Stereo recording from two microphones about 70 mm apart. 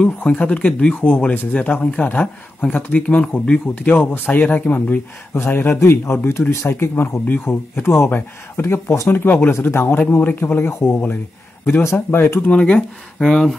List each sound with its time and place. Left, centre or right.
0.0 s speech: centre
3.9 s speech: left
6.5 s speech: left
12.4 s speech: centre